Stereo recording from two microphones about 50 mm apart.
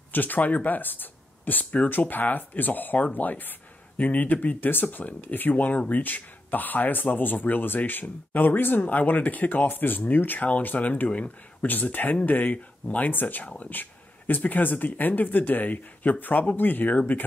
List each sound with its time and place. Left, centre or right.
0.1 s speech: left